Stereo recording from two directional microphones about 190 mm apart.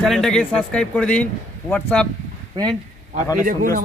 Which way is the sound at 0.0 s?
Centre (ahead or behind).